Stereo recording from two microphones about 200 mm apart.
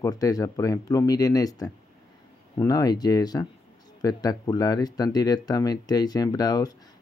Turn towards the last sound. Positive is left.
turn(degrees=20)  # may be behind; listen again after turning